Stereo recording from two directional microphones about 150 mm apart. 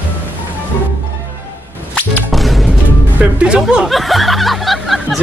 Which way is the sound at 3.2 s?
5° right (ahead or behind).